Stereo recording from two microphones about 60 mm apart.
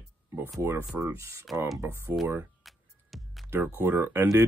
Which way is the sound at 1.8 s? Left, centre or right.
Right.